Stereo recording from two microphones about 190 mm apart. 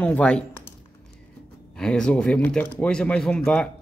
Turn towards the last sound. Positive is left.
turn(degrees=5)  # may be behind; listen again after turning